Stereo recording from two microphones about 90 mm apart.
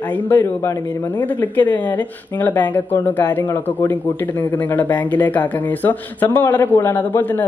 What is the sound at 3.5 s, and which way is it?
Speech, 30° left (ahead or behind).